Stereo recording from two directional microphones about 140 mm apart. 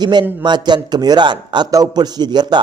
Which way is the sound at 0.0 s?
30° right (ahead or behind).